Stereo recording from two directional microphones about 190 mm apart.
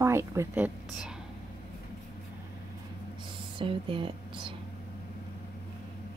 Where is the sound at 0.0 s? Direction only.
15° right (ahead or behind).